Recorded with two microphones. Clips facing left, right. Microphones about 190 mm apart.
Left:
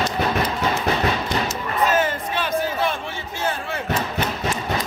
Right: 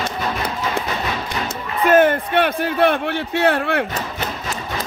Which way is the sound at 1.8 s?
55° right (ahead or behind).